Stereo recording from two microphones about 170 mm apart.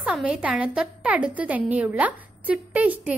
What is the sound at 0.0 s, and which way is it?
A woman's voice, 5° right (ahead or behind).